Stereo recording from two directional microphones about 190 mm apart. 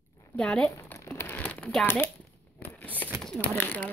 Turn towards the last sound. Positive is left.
turn(degrees=10)  # may be behind; listen again after turning